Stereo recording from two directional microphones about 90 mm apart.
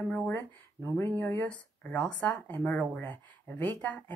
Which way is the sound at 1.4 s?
10° left (ahead or behind).